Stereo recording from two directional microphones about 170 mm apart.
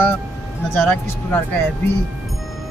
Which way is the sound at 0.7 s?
10° left (ahead or behind).